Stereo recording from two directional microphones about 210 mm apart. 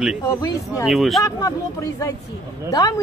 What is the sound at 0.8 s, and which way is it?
Speech, centre (ahead or behind).